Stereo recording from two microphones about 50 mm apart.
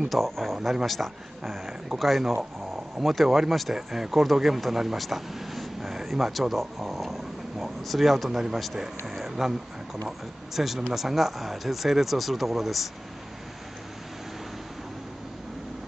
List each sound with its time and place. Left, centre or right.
0.1 s speech: centre